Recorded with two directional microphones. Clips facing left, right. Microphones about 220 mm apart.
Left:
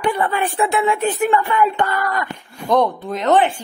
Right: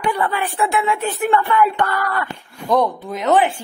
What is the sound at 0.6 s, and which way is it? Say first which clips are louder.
Speech: left 2 dB; 20° left (ahead or behind).